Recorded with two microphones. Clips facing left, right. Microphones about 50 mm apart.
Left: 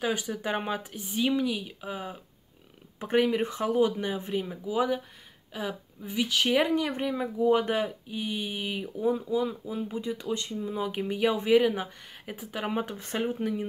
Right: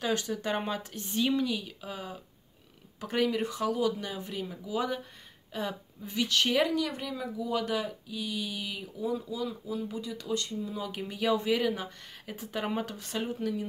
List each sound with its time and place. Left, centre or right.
0.0 s speech: centre
6.7 s speech: left
12.4 s speech: centre
12.8 s speech: left